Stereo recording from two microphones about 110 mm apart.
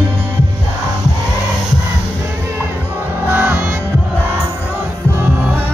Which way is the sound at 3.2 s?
20° right (ahead or behind).